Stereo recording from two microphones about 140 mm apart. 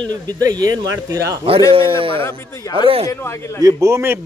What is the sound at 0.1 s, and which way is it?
A man's voice, 30° right (ahead or behind).